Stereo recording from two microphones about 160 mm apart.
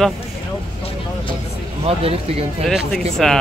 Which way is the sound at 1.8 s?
35° right (ahead or behind).